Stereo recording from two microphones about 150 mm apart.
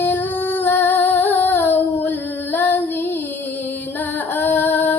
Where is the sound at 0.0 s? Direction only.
10° left (ahead or behind).